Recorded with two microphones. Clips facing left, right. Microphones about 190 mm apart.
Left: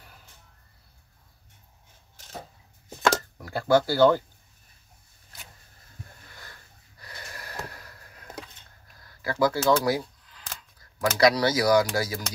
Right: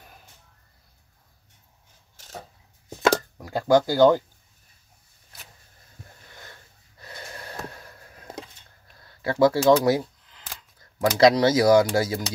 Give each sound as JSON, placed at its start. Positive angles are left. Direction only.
{"t": 3.4, "sound": "speech", "side_deg": -15}
{"t": 6.3, "sound": "snort", "side_deg": -20}
{"t": 9.0, "sound": "camera", "side_deg": -25}
{"t": 11.0, "sound": "speech", "side_deg": -25}